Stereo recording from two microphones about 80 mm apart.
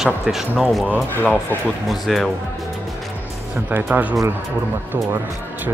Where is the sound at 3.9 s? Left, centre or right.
Right.